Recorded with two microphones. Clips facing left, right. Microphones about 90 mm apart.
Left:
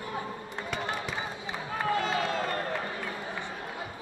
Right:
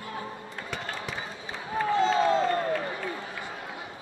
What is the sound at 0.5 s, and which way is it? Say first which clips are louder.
Basketball bounce: left 4 dB; 20° left (ahead or behind).